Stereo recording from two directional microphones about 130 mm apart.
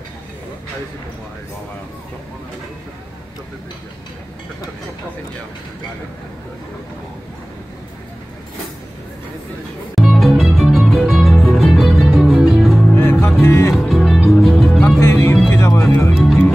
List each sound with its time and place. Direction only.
9.9 s music: centre (ahead or behind)
12.9 s music: 20° left (ahead or behind)
13.7 s music: centre (ahead or behind)
14.8 s music: 20° left (ahead or behind)